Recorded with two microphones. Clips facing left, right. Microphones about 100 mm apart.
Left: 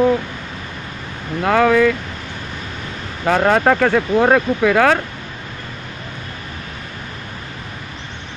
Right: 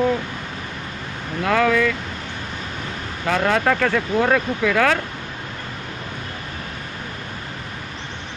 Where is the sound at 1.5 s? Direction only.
35° left (ahead or behind).